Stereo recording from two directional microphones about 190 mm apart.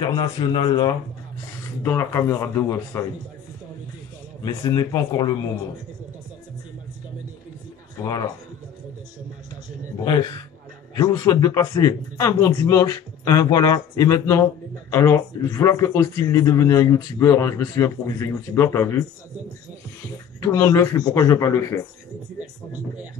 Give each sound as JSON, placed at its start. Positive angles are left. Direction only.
{"t": 0.0, "sound": "speech", "side_deg": 25}
{"t": 4.4, "sound": "speech", "side_deg": 20}
{"t": 11.0, "sound": "speech", "side_deg": 20}
{"t": 20.3, "sound": "speech", "side_deg": 15}